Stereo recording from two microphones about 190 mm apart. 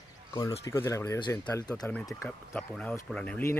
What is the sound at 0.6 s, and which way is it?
Speech, 15° left (ahead or behind).